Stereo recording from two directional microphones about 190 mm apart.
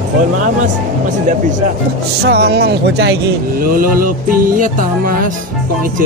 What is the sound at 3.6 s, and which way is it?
Music, 50° right (ahead or behind).